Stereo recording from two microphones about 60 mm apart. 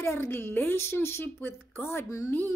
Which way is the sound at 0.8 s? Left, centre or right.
Left.